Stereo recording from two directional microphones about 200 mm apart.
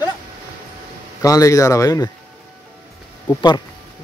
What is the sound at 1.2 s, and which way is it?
Speech, 15° left (ahead or behind).